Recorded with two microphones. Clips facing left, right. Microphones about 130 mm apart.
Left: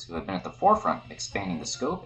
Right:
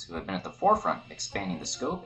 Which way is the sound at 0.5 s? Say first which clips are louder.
Left 2 dB; 25° left (ahead or behind).